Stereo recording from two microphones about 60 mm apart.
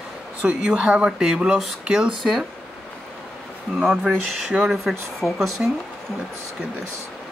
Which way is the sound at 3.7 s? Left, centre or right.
Centre.